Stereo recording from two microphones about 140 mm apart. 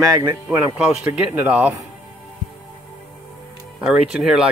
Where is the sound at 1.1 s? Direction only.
10° right (ahead or behind).